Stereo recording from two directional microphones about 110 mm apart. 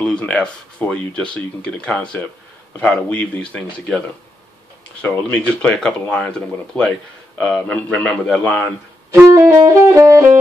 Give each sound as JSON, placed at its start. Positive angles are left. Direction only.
{"t": 0.0, "sound": "speech", "side_deg": 10}
{"t": 5.0, "sound": "speech", "side_deg": 15}
{"t": 9.1, "sound": "music", "side_deg": -30}